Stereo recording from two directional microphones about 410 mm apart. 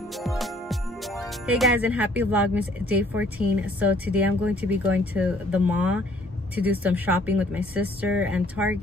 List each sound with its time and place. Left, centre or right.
0.1 s speech: centre